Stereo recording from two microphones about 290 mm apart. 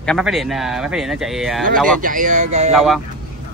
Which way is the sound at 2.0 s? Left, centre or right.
Right.